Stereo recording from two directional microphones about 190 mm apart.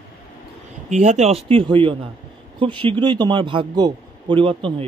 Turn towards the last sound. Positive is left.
turn(degrees=-25)  # may be behind; listen again after turning